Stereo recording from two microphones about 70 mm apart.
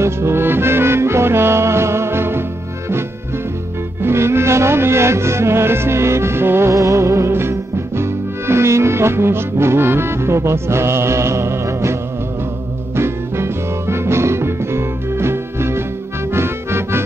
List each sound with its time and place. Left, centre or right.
0.0 s music: right
4.0 s music: right
6.7 s music: right